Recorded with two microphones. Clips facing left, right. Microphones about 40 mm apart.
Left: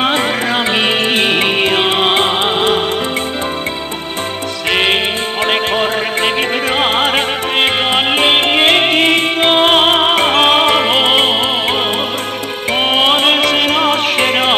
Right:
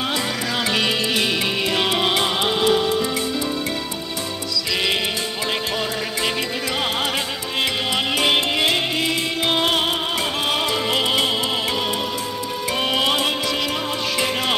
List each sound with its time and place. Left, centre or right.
0.0 s music: left
4.6 s music: left
12.7 s music: left